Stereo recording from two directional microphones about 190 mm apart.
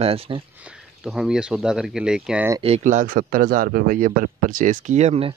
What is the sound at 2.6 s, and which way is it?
A man's voice, 35° right (ahead or behind).